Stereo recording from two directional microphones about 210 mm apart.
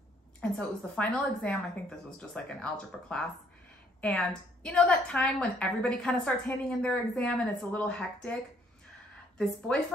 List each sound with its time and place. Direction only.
0.4 s a woman's voice: 5° left (ahead or behind)
9.7 s a woman's voice: 5° left (ahead or behind)